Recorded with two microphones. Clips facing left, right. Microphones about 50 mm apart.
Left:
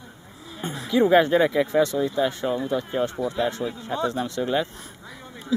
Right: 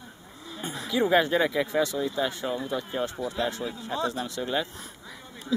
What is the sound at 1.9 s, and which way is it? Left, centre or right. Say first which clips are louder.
Speech: left 5 dB; centre.